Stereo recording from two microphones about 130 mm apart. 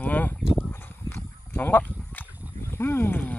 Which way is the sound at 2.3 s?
10° right (ahead or behind).